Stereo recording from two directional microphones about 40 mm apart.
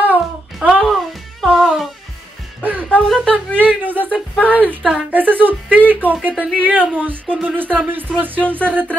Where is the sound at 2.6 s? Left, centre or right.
Right.